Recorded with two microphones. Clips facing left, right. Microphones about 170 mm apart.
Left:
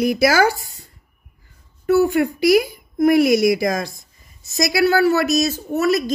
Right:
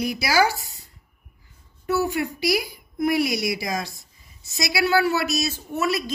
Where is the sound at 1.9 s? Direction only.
55° left (ahead or behind).